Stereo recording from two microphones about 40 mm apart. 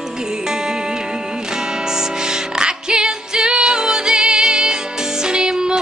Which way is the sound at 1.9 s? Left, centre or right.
Centre.